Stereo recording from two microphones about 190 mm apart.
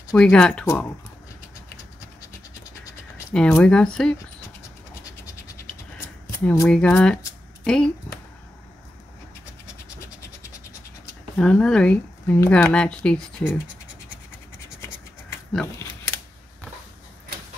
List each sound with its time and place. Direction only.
0.1 s speech: 5° left (ahead or behind)
3.3 s speech: 5° left (ahead or behind)
5.9 s a sound: 15° left (ahead or behind)
6.7 s speech: 5° left (ahead or behind)
11.3 s speech: 5° left (ahead or behind)
15.5 s a sound: 15° left (ahead or behind)